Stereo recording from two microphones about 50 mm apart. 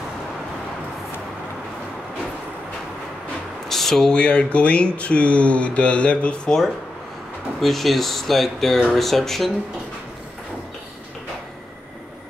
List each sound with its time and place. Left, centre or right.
3.6 s a sound: centre
4.2 s speech: left
7.6 s speech: centre